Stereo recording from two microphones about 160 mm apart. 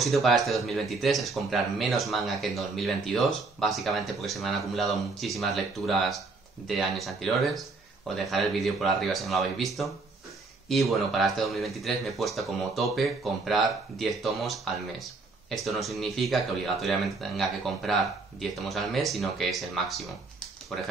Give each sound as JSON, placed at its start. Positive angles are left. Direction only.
{"t": 0.0, "sound": "speech", "side_deg": 0}